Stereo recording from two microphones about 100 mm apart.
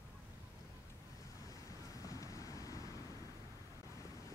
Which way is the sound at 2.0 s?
35° left (ahead or behind).